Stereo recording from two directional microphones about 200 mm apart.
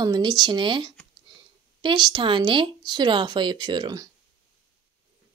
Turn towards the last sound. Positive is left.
turn(degrees=-20)  # may be behind; listen again after turning